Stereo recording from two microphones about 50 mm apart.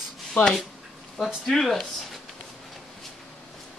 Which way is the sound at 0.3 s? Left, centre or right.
Centre.